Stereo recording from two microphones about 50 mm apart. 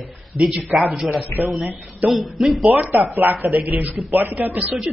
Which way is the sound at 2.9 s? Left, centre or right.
Right.